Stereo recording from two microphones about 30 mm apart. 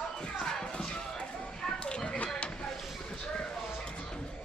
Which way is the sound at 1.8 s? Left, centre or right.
Left.